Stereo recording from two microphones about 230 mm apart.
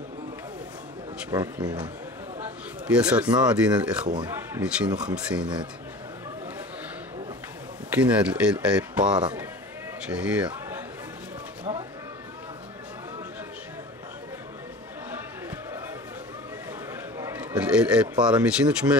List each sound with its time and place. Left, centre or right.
1.3 s a man's voice: centre
2.4 s a sound: centre
3.4 s speech: centre
4.1 s speech: centre
7.9 s speech: centre
17.2 s a sound: centre
18.1 s speech: centre